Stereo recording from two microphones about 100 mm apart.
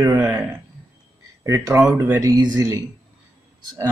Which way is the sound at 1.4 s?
30° right (ahead or behind).